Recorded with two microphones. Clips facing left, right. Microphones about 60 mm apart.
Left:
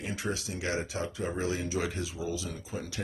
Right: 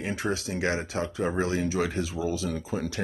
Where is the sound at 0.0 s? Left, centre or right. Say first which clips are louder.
Right 5 dB; right.